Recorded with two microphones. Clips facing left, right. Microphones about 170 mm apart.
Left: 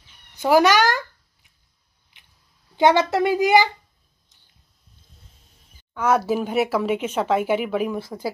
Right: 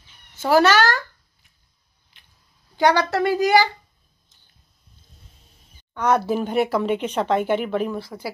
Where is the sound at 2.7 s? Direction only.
20° left (ahead or behind).